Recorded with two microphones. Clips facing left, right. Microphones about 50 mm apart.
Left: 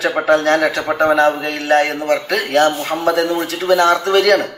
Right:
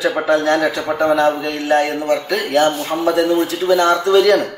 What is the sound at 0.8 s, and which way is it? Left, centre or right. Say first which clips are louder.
A man's voice: left 2 dB; left.